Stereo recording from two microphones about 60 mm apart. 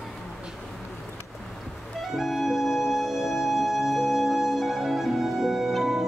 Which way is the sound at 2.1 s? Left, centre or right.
Centre.